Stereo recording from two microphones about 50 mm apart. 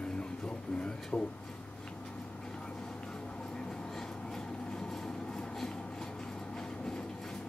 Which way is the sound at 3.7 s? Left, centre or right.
Centre.